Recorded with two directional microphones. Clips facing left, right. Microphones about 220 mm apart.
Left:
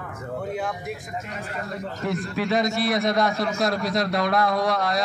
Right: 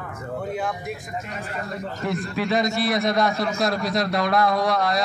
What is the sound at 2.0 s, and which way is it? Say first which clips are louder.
A man's voice: even; 50° left (ahead or behind).